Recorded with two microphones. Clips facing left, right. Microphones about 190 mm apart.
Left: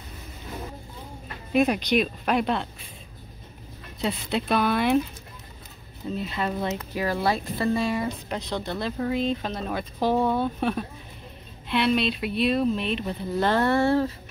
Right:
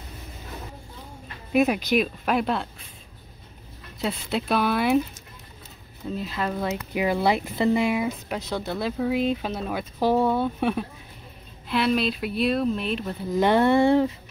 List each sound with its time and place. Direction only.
1.5 s speech: 5° right (ahead or behind)
4.0 s speech: centre (ahead or behind)
6.1 s speech: centre (ahead or behind)
6.9 s speech: 15° right (ahead or behind)
13.4 s speech: 15° right (ahead or behind)